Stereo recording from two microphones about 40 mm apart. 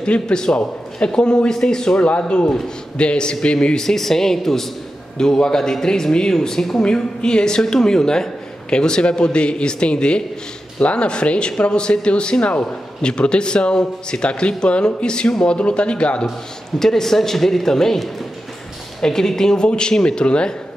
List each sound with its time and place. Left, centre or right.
0.0 s speech: left
2.0 s speech: left; by 6.8 s centre
6.8 s speech: left
16.8 s speech: centre